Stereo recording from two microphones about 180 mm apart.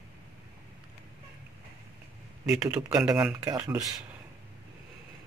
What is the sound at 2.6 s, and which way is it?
Speech, 20° right (ahead or behind).